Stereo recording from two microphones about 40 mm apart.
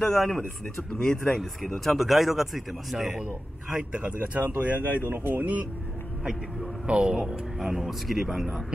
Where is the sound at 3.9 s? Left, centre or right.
Right.